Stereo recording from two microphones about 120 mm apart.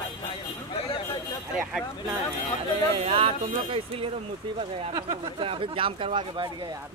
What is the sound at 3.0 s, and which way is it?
Speech, 50° right (ahead or behind).